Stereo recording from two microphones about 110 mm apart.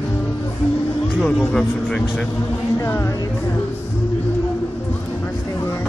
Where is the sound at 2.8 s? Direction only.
25° left (ahead or behind).